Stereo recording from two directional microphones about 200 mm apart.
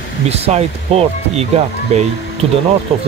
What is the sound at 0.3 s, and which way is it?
Speech, 30° right (ahead or behind).